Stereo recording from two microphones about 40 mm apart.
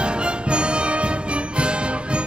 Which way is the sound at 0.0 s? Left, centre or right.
Right.